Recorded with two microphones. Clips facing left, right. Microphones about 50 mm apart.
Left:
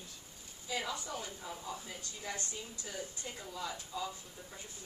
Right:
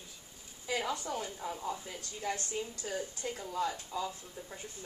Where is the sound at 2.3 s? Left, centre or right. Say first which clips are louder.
Right 6 dB; right.